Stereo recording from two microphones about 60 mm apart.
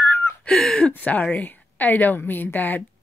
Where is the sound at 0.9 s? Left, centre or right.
Left.